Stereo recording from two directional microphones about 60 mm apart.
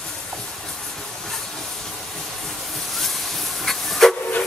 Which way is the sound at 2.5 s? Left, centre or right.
Centre.